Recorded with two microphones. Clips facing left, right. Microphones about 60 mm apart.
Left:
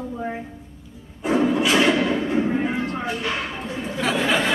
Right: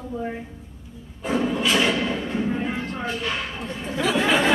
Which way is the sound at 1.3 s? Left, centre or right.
Left.